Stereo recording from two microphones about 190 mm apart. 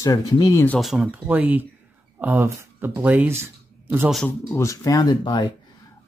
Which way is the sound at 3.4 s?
10° right (ahead or behind).